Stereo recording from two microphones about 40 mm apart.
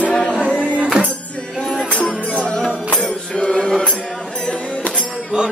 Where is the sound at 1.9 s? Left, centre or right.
Left.